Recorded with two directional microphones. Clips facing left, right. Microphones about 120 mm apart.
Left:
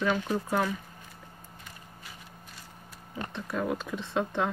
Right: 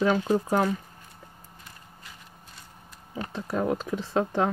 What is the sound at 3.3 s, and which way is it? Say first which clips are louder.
Speech: right 4 dB; 40° right (ahead or behind).